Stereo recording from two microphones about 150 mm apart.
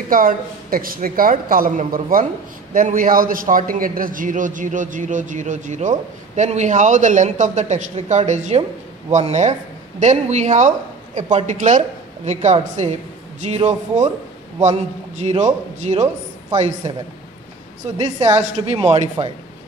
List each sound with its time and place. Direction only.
0.1 s a man's voice: 70° right (ahead or behind); by 16.9 s 50° right (ahead or behind)
17.9 s speech: 50° right (ahead or behind)